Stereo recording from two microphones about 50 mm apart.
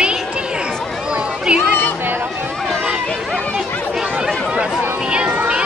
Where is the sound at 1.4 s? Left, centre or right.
Centre.